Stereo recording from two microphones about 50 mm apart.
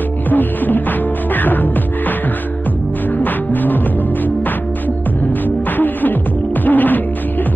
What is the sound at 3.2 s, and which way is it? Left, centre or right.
Music, left.